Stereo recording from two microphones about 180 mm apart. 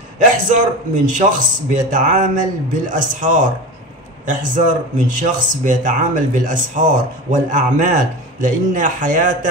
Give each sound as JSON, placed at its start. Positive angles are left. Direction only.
{"t": 0.5, "sound": "speech", "side_deg": -45}